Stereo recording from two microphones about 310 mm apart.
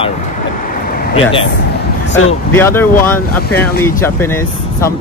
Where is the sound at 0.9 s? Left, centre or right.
Left.